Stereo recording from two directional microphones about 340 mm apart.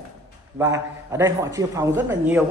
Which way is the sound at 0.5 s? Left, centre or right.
Centre.